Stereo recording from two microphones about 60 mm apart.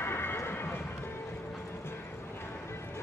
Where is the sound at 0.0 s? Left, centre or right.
Left.